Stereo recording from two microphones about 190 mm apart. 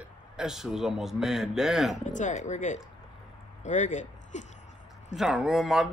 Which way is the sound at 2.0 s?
40° left (ahead or behind).